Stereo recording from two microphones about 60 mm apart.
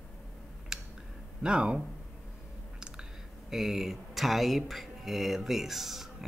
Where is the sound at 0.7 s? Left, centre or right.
Centre.